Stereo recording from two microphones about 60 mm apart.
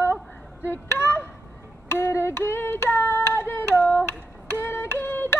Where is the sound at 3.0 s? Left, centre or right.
Left.